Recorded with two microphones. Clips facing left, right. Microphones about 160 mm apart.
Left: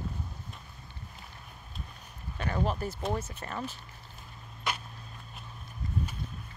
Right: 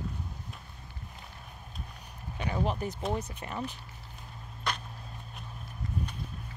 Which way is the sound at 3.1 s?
15° right (ahead or behind).